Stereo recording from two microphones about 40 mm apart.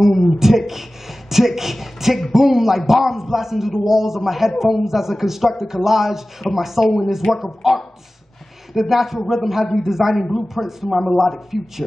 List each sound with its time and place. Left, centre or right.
0.0 s a man's voice: centre